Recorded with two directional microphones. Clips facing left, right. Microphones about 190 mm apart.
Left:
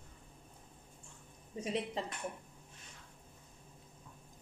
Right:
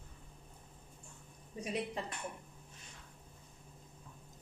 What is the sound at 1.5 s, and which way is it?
Speech, 25° left (ahead or behind).